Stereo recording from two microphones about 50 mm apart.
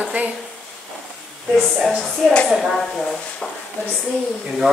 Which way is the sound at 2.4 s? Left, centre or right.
Centre.